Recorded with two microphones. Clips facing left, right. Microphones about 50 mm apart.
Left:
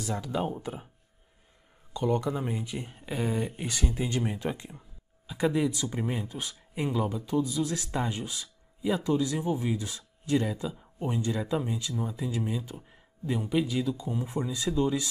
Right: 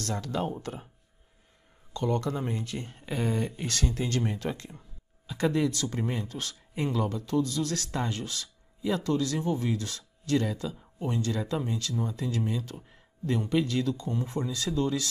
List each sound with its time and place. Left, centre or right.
0.0 s speech: centre
2.0 s speech: centre